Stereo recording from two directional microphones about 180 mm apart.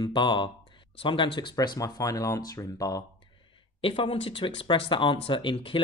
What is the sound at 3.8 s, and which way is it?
Speech, 30° left (ahead or behind).